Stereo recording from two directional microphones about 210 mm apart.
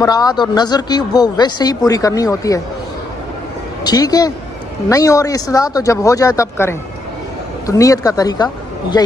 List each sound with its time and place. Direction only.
0.0 s speech: 20° left (ahead or behind)
3.8 s speech: 20° left (ahead or behind)